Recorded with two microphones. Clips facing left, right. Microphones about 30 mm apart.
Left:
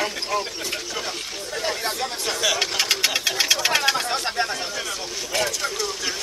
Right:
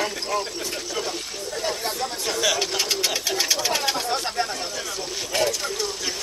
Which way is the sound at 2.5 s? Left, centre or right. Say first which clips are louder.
Left 2 dB; left.